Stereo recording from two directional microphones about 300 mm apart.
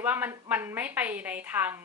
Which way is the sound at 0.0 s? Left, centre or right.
Centre.